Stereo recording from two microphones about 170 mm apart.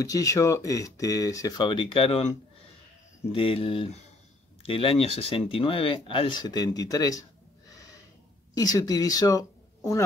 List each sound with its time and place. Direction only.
0.0 s speech: 20° left (ahead or behind)
8.5 s speech: 20° left (ahead or behind)